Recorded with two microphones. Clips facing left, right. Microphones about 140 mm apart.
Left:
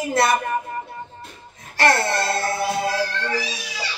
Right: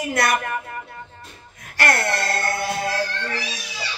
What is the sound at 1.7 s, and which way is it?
Music, 25° left (ahead or behind).